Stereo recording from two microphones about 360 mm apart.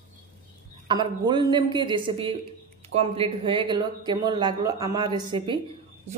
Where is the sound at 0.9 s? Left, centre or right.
Centre.